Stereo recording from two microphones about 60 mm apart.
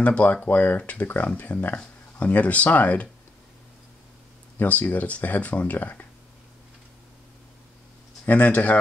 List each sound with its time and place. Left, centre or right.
0.0 s speech: left
4.6 s speech: left
8.3 s speech: left